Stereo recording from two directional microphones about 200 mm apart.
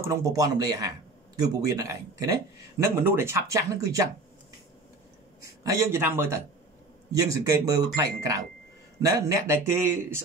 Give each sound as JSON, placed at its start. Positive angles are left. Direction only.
{"t": 0.1, "sound": "speech", "side_deg": -15}
{"t": 5.4, "sound": "speech", "side_deg": -15}